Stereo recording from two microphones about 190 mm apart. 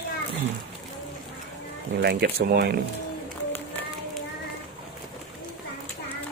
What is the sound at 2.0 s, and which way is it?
Speech, 55° right (ahead or behind).